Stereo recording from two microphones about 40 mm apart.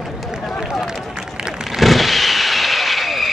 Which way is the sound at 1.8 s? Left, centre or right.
Centre.